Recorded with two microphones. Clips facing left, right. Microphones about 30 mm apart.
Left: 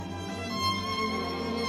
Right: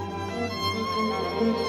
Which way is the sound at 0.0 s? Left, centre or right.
Centre.